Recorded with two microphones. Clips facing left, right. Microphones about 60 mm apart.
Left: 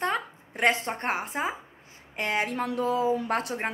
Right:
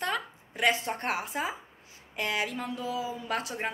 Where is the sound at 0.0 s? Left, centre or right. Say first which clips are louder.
Left 3 dB; left.